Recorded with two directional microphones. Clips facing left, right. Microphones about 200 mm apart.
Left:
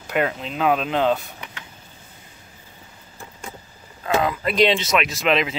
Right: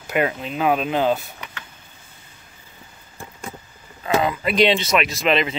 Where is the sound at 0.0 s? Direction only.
5° right (ahead or behind).